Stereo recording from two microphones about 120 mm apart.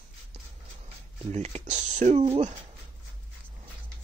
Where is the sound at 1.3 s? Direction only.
70° right (ahead or behind).